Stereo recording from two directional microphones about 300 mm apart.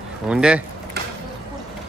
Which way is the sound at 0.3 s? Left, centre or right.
Centre.